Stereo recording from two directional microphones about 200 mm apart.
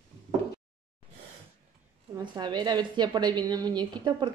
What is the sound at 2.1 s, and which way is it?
A woman's voice, 20° right (ahead or behind).